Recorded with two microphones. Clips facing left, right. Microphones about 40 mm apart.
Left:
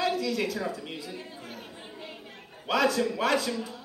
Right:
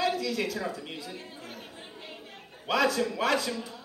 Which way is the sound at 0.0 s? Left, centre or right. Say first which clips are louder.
Left 1 dB; centre.